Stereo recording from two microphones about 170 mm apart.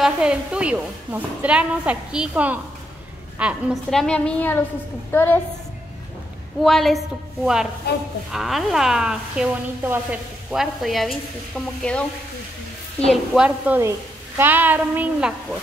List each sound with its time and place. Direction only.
0.0 s a woman's voice: 5° right (ahead or behind); by 5.4 s 10° left (ahead or behind)
6.6 s speech: centre (ahead or behind)
7.8 s a woman's voice: 75° left (ahead or behind)
8.3 s speech: centre (ahead or behind)
13.0 s a woman's voice: centre (ahead or behind)